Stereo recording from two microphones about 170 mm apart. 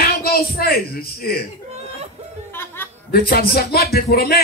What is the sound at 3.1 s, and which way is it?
A man's voice, 65° left (ahead or behind).